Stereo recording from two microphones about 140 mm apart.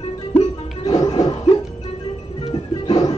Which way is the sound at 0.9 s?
30° left (ahead or behind).